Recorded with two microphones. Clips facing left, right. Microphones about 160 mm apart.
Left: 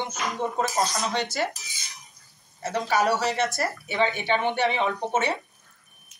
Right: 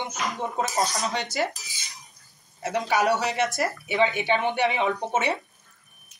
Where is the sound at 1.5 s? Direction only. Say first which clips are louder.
Even; centre (ahead or behind).